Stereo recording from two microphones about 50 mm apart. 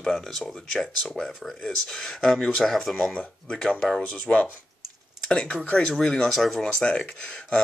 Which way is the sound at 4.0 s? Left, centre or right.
Left.